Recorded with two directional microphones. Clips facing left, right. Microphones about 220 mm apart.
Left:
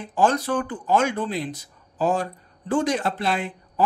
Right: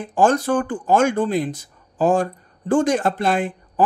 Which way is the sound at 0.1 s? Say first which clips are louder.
Right 4 dB; 50° right (ahead or behind).